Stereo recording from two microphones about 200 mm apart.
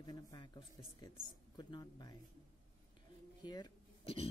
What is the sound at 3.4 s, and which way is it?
Speech, 20° left (ahead or behind).